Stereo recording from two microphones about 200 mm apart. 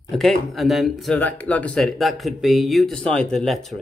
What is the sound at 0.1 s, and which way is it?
Speech, centre (ahead or behind).